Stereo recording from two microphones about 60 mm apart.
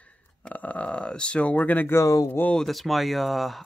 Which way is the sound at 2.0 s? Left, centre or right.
Left.